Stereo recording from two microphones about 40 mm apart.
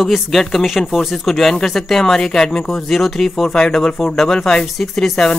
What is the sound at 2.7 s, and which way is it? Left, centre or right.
Speech, centre.